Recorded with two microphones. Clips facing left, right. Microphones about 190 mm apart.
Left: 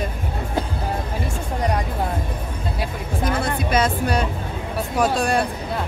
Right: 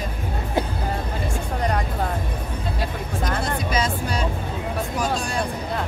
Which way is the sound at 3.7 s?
60° left (ahead or behind).